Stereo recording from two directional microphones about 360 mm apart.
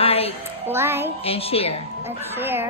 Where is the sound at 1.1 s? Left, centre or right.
Centre.